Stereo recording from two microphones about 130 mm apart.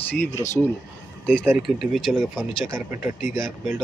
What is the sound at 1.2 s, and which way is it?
Speech, 5° left (ahead or behind).